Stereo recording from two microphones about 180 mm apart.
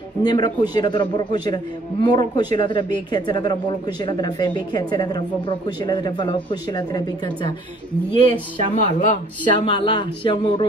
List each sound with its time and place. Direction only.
0.2 s a man's voice: 25° left (ahead or behind)
8.7 s speech: 40° left (ahead or behind)
9.4 s a man's voice: 25° left (ahead or behind)